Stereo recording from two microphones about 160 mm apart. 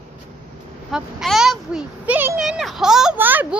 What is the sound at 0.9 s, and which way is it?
A child's voice, 5° right (ahead or behind).